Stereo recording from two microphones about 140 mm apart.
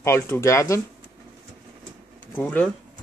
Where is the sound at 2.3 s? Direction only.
10° left (ahead or behind).